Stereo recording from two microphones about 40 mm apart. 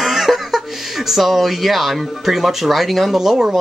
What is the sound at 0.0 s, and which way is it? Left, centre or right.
Speech, centre.